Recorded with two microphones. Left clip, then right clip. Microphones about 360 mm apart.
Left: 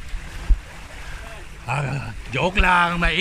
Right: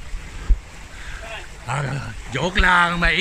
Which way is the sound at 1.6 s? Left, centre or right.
Centre.